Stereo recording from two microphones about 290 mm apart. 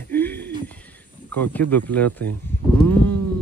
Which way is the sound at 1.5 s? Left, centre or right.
Centre.